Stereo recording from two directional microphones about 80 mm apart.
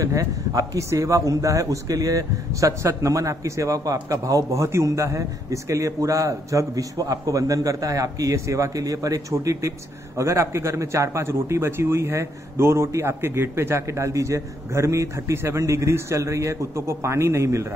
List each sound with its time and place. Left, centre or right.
0.0 s a man's voice: right